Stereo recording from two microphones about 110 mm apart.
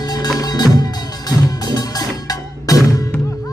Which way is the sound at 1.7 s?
35° left (ahead or behind).